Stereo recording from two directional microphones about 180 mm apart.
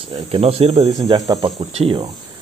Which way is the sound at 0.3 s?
35° right (ahead or behind).